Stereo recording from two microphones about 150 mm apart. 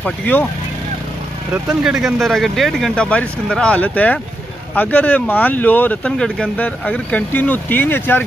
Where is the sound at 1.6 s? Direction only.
5° right (ahead or behind).